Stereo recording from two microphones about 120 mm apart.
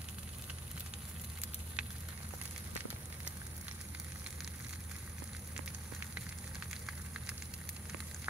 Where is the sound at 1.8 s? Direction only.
10° right (ahead or behind).